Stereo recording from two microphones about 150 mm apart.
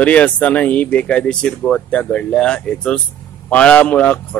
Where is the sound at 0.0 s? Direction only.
10° left (ahead or behind).